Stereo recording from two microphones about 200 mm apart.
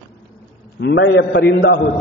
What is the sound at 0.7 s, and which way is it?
A man's voice, 60° left (ahead or behind).